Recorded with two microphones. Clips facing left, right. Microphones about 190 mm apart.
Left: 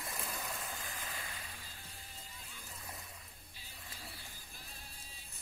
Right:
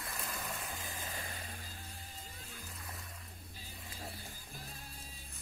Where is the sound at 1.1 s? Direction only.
40° right (ahead or behind).